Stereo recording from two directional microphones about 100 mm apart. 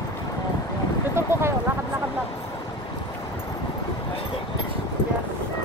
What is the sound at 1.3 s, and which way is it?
Speech, 25° right (ahead or behind).